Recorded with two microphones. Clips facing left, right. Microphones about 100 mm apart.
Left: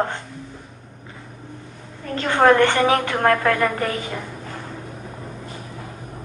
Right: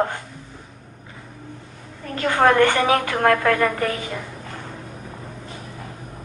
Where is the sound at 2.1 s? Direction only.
30° left (ahead or behind).